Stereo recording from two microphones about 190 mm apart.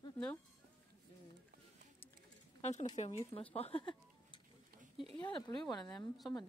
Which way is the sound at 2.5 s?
35° left (ahead or behind).